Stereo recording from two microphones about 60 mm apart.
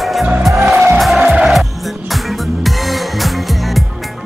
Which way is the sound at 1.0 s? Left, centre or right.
Centre.